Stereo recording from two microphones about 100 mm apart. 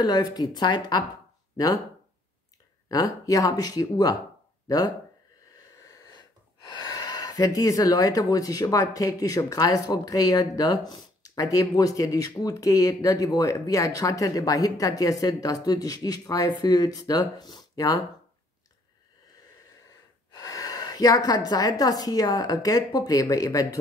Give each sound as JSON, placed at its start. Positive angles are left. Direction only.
{"t": 0.0, "sound": "speech", "side_deg": 45}
{"t": 2.9, "sound": "speech", "side_deg": 35}
{"t": 20.2, "sound": "a woman's voice", "side_deg": 35}